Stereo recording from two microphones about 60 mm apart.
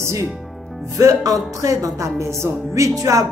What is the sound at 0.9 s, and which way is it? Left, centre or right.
A woman's voice, right.